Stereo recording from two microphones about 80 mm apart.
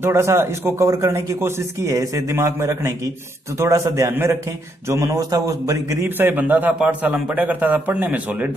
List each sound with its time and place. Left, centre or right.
0.0 s a man's voice: right
4.8 s a man's voice: right
6.0 s a man's voice: right